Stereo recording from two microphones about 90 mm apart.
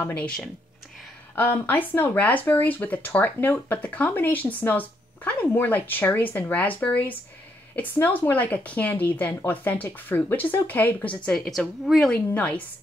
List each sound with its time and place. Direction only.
1.3 s speech: 20° left (ahead or behind)
11.2 s a woman's voice: 5° left (ahead or behind)
12.1 s a woman's voice: 15° left (ahead or behind)